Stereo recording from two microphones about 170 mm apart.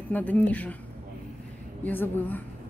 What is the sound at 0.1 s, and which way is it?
Speech, 10° left (ahead or behind).